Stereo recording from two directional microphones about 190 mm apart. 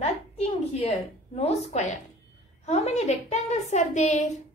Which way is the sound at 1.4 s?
35° left (ahead or behind).